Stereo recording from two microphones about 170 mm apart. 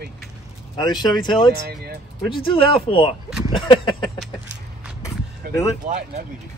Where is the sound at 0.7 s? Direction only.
25° left (ahead or behind).